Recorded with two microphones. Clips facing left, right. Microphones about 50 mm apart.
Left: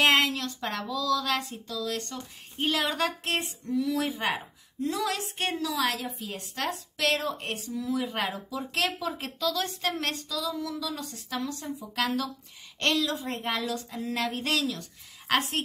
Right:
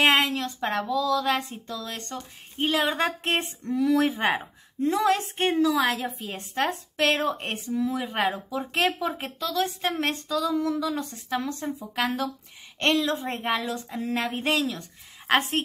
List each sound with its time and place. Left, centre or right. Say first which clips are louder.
0.0 s a woman's voice: right 2 dB; right
9.2 s a woman's voice: right 2 dB; centre
10.2 s a woman's voice: right 7 dB; right